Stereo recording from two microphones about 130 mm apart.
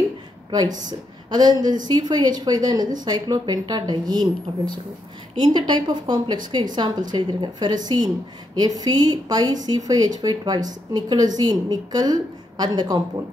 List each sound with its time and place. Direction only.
0.5 s a woman's voice: 30° right (ahead or behind)
5.4 s speech: 35° right (ahead or behind)